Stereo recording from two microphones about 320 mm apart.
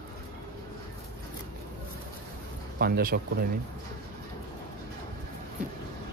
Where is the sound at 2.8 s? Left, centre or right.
Right.